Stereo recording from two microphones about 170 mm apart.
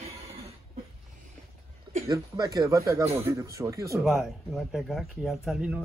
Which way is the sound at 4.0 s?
Centre (ahead or behind).